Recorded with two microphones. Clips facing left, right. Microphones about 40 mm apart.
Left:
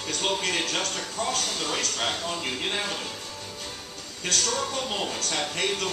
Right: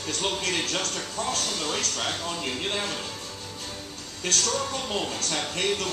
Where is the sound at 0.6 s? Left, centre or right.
Left.